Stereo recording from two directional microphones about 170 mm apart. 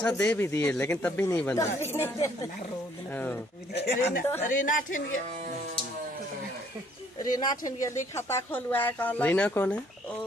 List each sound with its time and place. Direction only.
0.0 s speech: 10° left (ahead or behind)
3.7 s speech: 70° left (ahead or behind)
4.4 s a woman's voice: 50° left (ahead or behind)
7.3 s speech: 20° left (ahead or behind)